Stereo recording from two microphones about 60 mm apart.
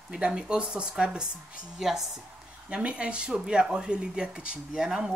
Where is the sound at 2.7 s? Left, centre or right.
Centre.